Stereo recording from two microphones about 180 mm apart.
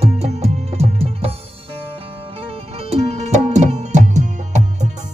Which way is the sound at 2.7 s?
35° right (ahead or behind).